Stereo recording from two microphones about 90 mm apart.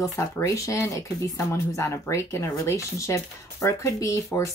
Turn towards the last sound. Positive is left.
turn(degrees=30)  # may be behind; listen again after turning